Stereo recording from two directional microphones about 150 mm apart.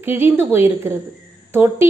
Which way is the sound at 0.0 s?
15° right (ahead or behind).